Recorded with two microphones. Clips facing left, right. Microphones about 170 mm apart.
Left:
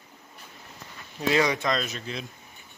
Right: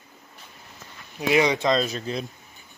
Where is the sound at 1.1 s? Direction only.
15° right (ahead or behind); by 2.3 s 35° right (ahead or behind).